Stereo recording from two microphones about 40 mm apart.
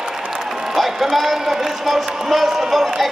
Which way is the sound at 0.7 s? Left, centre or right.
Centre.